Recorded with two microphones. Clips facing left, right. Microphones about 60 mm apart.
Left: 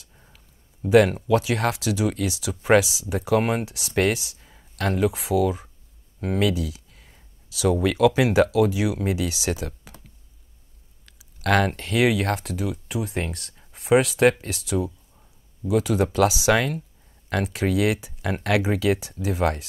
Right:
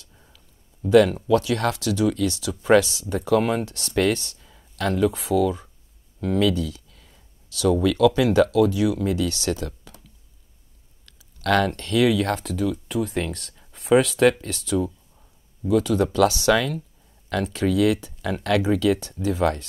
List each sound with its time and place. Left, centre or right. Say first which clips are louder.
0.0 s a sound: right 1 dB; centre
0.8 s speech: right 1 dB; left
5.1 s speech: right 1 dB; centre
7.0 s a sound: left 1 dB; left
7.4 s speech: right 1 dB; centre
11.1 s speech: even; centre
12.3 s speech: right 2 dB; centre
15.7 s speech: right 1 dB; centre
16.5 s speech: even; left
17.3 s speech: right 1 dB; centre
19.2 s speech: right 2 dB; centre